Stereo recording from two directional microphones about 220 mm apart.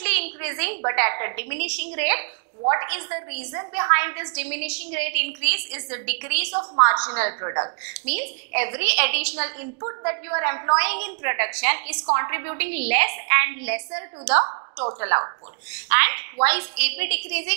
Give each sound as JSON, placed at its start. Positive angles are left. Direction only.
{"t": 0.0, "sound": "a woman's voice", "side_deg": -10}
{"t": 14.4, "sound": "a woman's voice", "side_deg": -30}
{"t": 15.9, "sound": "a woman's voice", "side_deg": -15}